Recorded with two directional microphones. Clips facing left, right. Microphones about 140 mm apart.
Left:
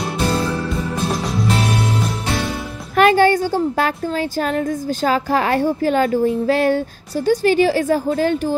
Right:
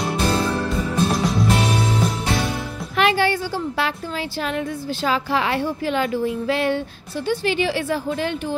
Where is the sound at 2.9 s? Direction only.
45° left (ahead or behind).